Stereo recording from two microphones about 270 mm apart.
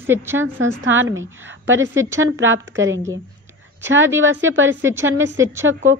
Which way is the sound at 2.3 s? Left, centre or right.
Right.